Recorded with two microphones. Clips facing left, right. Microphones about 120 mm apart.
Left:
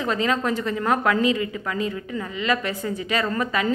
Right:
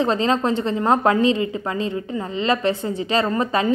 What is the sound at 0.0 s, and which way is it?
A woman's voice, 30° right (ahead or behind).